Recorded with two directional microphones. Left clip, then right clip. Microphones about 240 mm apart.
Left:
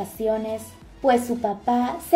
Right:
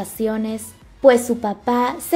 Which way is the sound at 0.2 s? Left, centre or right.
Right.